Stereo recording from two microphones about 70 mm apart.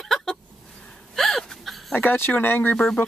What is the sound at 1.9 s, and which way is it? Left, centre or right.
Speech, left.